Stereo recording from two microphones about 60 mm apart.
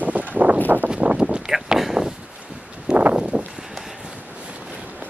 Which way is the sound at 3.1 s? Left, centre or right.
Centre.